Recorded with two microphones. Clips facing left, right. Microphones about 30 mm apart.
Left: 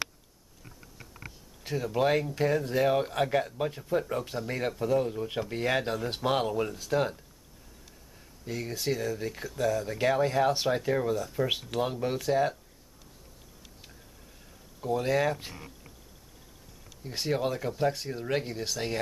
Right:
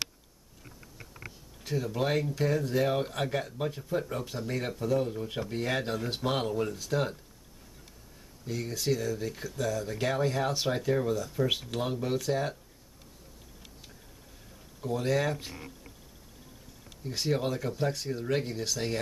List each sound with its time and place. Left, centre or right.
0.7 s a sound: centre
1.8 s speech: centre
2.7 s speech: centre
8.5 s speech: centre
12.0 s speech: centre
14.8 s speech: centre
17.1 s speech: centre